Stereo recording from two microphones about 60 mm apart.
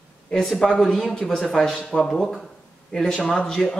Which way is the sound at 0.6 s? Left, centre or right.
Centre.